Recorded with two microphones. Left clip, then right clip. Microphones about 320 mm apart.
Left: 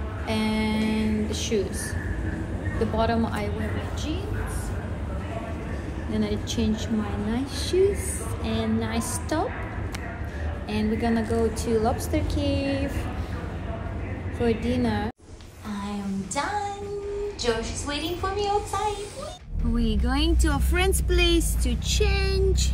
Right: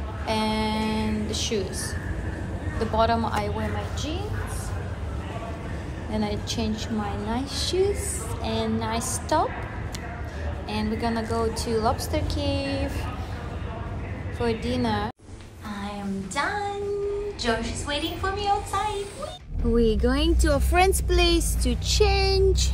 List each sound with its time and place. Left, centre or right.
0.3 s a sound: centre
3.0 s speech: centre
6.1 s speech: centre
10.7 s speech: centre
14.4 s speech: centre
16.4 s music: centre
17.4 s a woman's voice: centre
19.7 s speech: centre